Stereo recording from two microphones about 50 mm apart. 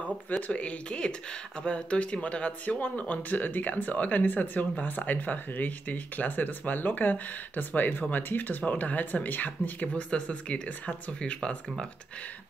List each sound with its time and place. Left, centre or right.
0.5 s speech: left